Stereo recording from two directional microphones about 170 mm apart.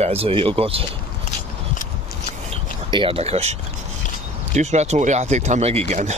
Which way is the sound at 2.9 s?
35° right (ahead or behind).